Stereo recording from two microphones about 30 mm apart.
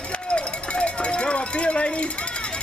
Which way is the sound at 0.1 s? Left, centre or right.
Left.